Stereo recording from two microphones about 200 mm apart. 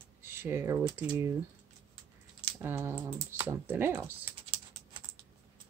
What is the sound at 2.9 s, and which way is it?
Speech, 10° right (ahead or behind).